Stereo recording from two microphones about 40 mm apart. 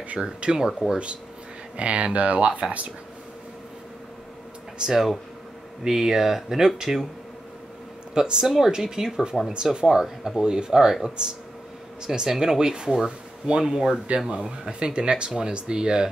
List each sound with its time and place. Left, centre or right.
0.2 s speech: centre
1.8 s speech: right
4.7 s speech: centre
8.1 s speech: centre
9.8 s speech: centre
12.1 s speech: centre